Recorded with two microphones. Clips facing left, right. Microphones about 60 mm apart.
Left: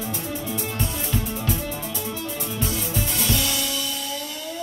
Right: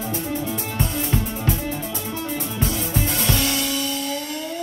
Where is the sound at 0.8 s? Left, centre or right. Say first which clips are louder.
Right 3 dB; right.